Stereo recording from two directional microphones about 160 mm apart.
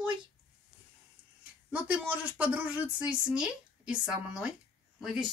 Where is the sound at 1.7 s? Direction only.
10° right (ahead or behind).